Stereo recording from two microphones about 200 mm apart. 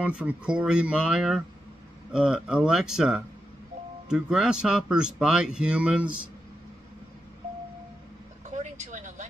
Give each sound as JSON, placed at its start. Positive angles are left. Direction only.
{"t": 0.0, "sound": "speech", "side_deg": -5}
{"t": 8.5, "sound": "vehicle", "side_deg": -35}